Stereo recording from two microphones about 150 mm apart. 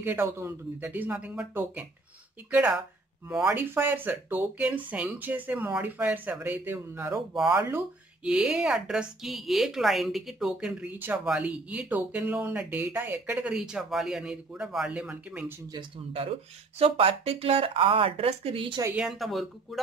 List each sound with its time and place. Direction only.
0.0 s speech: 15° right (ahead or behind)
8.3 s speech: 5° right (ahead or behind)
15.7 s speech: 35° right (ahead or behind)
18.9 s speech: centre (ahead or behind)